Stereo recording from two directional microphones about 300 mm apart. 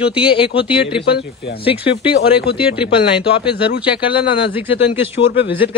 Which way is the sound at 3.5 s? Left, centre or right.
Left.